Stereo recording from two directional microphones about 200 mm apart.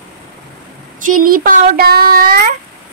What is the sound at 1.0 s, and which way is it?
Child singing, 45° right (ahead or behind).